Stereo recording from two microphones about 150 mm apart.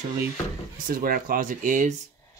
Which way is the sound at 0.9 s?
70° right (ahead or behind).